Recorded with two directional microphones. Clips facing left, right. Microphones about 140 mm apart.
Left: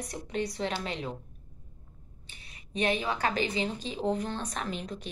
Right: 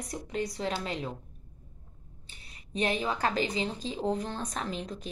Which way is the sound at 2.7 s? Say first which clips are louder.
Left 1 dB; 35° right (ahead or behind).